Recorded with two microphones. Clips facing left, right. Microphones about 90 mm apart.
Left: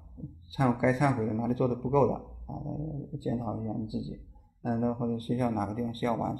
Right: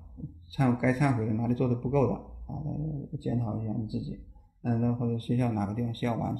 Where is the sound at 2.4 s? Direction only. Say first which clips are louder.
Right 1 dB; 10° left (ahead or behind).